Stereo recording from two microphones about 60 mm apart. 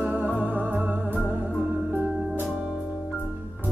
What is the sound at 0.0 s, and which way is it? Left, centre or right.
Music, right.